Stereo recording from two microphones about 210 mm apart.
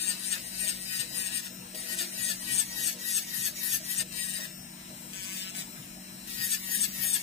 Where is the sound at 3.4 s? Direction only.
30° left (ahead or behind).